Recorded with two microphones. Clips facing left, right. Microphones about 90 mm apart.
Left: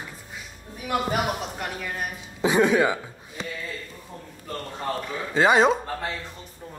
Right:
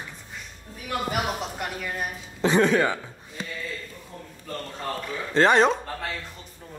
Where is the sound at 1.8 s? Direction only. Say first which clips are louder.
Even; centre (ahead or behind).